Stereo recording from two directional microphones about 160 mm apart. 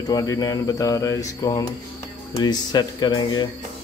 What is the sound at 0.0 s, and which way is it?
Speech, 20° left (ahead or behind).